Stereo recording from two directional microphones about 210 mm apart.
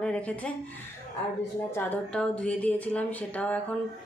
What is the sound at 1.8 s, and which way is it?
Speech, 5° left (ahead or behind).